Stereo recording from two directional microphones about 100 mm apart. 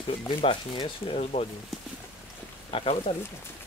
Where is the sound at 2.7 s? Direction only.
75° left (ahead or behind).